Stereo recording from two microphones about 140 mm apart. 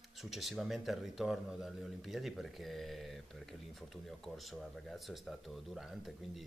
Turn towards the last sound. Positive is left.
turn(degrees=0)  # may be behind; listen again after turning